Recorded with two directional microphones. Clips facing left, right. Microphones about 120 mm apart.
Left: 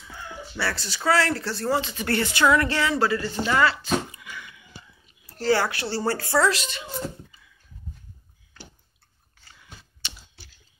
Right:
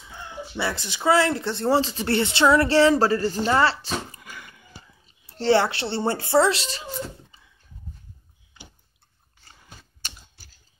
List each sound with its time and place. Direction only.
0.1 s speech: 20° right (ahead or behind); by 4.6 s 45° right (ahead or behind)
5.0 s speech: 25° right (ahead or behind)
9.4 s chewing: 40° right (ahead or behind)